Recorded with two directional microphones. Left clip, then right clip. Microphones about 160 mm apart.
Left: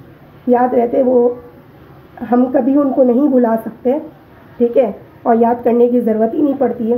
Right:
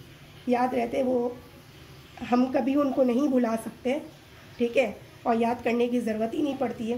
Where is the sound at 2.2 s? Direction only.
15° right (ahead or behind).